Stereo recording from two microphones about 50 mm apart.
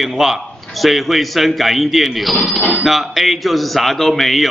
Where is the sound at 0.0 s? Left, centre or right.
Centre.